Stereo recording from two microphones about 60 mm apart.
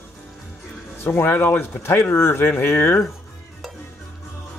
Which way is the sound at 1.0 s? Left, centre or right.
Left.